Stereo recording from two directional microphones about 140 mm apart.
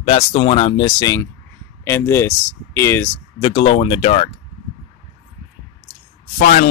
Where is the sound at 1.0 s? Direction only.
25° left (ahead or behind).